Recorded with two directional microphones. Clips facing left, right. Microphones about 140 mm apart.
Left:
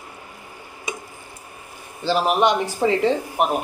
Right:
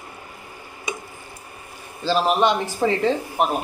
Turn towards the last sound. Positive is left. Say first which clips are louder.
# left 1 dB
turn(degrees=15)  # may be behind; listen again after turning